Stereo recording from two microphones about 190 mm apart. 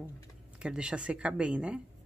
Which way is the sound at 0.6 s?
5° right (ahead or behind).